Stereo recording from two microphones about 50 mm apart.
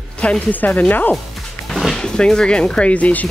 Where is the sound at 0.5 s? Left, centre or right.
Left.